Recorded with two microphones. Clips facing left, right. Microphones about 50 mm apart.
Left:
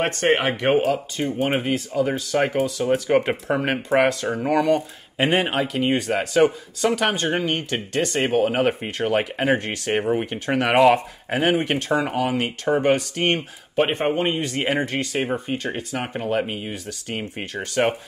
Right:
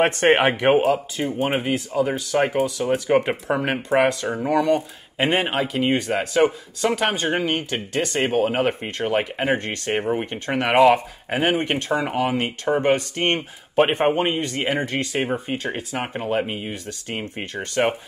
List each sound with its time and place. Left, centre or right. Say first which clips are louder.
0.0 s speech: right 3 dB; right
0.7 s speech: left 1 dB; centre
13.7 s speech: right 3 dB; centre
14.3 s speech: even; centre